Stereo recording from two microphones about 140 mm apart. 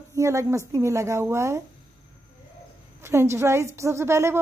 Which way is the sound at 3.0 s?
20° right (ahead or behind).